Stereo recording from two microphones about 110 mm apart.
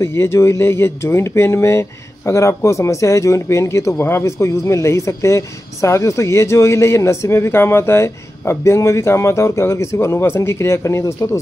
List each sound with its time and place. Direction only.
0.0 s speech: 25° left (ahead or behind)